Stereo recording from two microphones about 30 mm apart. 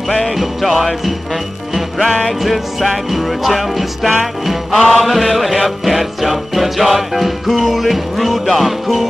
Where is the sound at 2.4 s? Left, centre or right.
Centre.